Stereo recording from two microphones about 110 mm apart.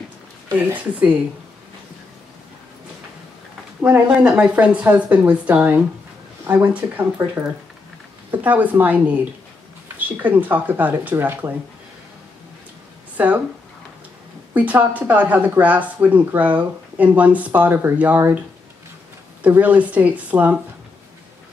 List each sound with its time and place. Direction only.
0.7 s speech: 15° right (ahead or behind)
3.8 s speech: 15° right (ahead or behind)
14.5 s speech: 15° right (ahead or behind)
19.4 s speech: 15° right (ahead or behind)